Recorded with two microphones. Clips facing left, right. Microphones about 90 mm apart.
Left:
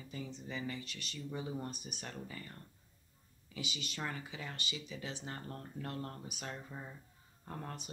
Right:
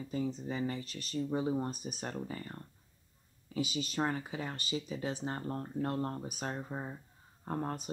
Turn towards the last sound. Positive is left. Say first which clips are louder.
# right 9 dB
turn(degrees=-35)  # may be behind; listen again after turning